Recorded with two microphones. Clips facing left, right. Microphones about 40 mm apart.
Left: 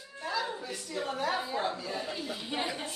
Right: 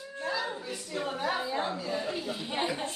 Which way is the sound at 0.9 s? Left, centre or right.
Centre.